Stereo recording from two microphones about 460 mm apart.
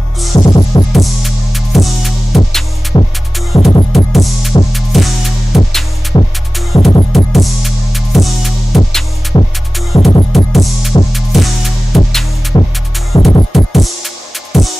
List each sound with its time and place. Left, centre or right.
0.2 s music: centre